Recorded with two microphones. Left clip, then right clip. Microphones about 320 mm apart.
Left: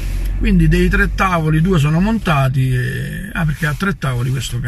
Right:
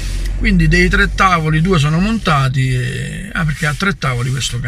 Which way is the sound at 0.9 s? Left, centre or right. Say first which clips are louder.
Right 3 dB; centre.